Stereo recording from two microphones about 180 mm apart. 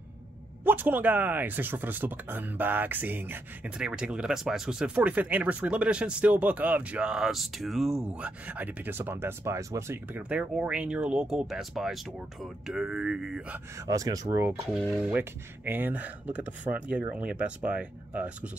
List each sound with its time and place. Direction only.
0.7 s speech: 10° right (ahead or behind)
13.8 s speech: 20° right (ahead or behind)
14.7 s speech: centre (ahead or behind)